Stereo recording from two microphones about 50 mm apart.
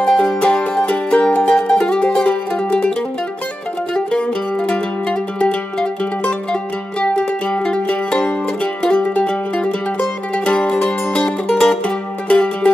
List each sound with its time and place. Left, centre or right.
0.1 s music: centre
0.4 s music: centre
3.9 s music: centre
8.8 s music: left